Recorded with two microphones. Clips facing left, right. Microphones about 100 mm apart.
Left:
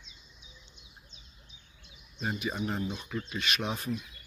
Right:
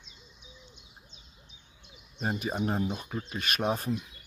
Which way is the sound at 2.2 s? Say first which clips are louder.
Right 2 dB; 40° right (ahead or behind).